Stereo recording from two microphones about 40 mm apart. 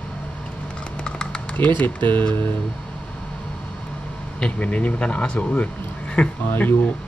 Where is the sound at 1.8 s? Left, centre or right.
Left.